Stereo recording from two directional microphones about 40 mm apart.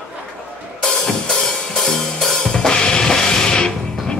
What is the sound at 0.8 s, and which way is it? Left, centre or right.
Drum kit, centre.